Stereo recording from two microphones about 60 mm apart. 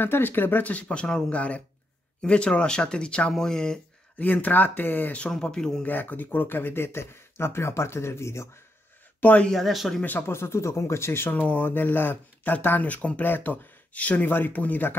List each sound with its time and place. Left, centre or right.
0.0 s speech: left; by 3.8 s centre
4.2 s speech: left
5.3 s speech: centre
5.9 s speech: left
9.2 s speech: left
9.5 s speech: centre
10.0 s speech: left